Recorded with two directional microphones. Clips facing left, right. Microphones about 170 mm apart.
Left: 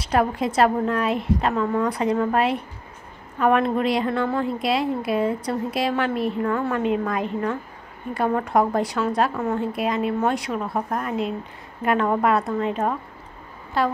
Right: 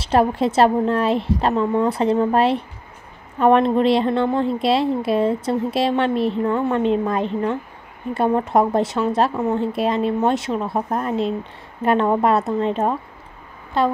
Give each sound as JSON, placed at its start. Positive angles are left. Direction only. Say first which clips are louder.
{"t": 0.0, "sound": "a woman's voice", "louder": "right 4 dB", "side_deg": -30}